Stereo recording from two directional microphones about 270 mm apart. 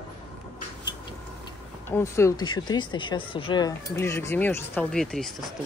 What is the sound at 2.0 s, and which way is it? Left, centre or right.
Speech, centre.